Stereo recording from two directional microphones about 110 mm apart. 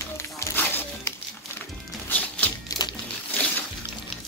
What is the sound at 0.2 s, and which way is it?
Music, 20° left (ahead or behind).